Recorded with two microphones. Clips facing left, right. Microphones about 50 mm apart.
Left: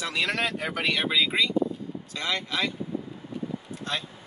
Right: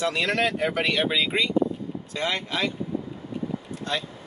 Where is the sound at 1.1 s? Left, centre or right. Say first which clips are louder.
Right 1 dB; centre.